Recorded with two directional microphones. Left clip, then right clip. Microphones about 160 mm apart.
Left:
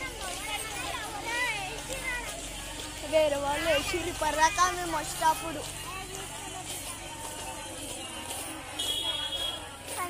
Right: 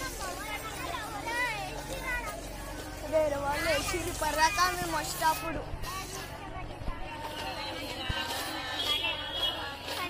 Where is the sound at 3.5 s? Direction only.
35° left (ahead or behind).